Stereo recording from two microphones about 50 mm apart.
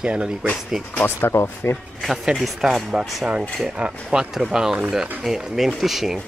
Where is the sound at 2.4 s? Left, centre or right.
Centre.